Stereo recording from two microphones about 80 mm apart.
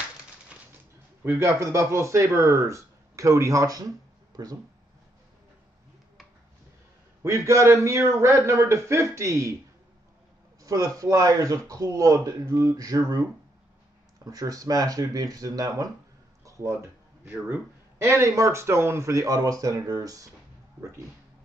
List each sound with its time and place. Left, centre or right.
1.2 s a man's voice: right
7.2 s a man's voice: right
10.6 s speech: right
14.2 s speech: right
16.4 s a sound: right
17.9 s a man's voice: right